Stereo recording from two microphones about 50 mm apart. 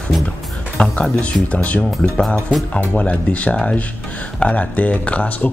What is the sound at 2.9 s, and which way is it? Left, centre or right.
Speech, left.